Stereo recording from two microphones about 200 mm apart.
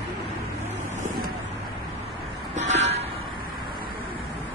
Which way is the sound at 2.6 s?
35° right (ahead or behind).